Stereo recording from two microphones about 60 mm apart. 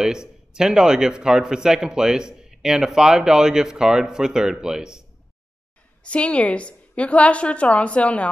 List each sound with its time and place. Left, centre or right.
0.0 s speech: centre
6.0 s a woman's voice: centre